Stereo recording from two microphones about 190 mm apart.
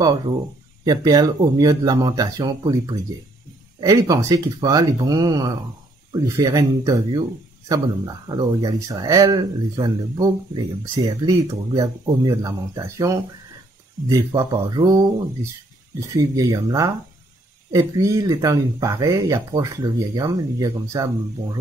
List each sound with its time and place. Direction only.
0.8 s a man's voice: 20° right (ahead or behind)
16.2 s speech: 20° right (ahead or behind)